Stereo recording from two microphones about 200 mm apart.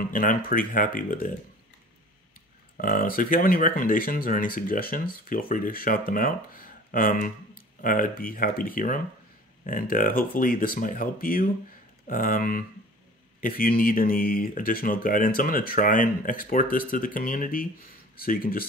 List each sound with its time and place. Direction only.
0.1 s speech: 45° left (ahead or behind)
2.8 s speech: 45° left (ahead or behind)